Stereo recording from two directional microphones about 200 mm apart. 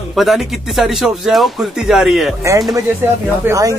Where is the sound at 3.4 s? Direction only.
15° right (ahead or behind).